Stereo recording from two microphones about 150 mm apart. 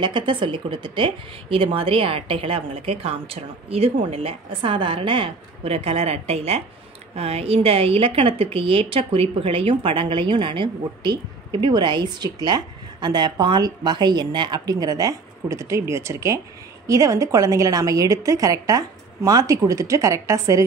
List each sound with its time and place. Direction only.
0.0 s a woman's voice: 30° right (ahead or behind)